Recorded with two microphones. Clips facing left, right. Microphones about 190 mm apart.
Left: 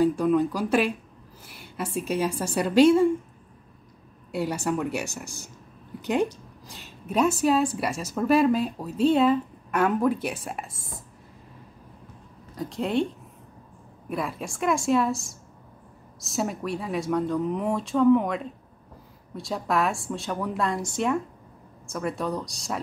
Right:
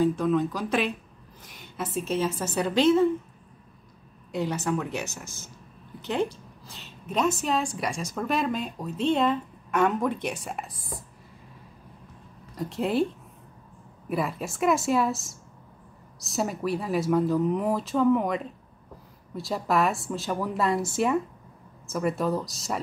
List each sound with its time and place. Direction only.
0.0 s a woman's voice: 10° left (ahead or behind)
4.3 s speech: 10° left (ahead or behind)
12.5 s speech: centre (ahead or behind)